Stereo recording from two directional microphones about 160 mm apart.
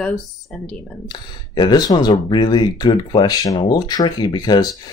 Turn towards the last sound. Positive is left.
turn(degrees=25)  # may be behind; listen again after turning